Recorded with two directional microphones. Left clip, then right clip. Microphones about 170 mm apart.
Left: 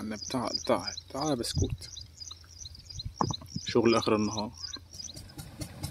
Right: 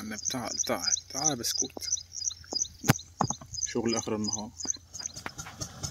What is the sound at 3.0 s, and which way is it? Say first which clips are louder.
Horse: right 1 dB; 50° right (ahead or behind).